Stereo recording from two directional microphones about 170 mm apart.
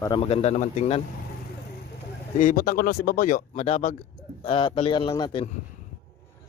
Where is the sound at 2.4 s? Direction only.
55° left (ahead or behind).